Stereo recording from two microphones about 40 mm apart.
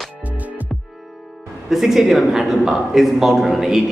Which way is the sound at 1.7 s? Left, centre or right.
Centre.